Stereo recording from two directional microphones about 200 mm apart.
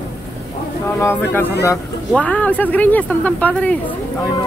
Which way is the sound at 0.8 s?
10° left (ahead or behind).